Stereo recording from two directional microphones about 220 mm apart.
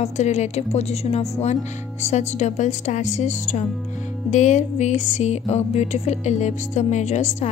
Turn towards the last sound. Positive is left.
turn(degrees=30)  # may be behind; listen again after turning